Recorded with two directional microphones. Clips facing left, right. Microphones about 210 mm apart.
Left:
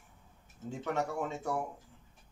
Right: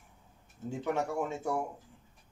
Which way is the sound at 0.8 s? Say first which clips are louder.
Right 2 dB; 10° right (ahead or behind).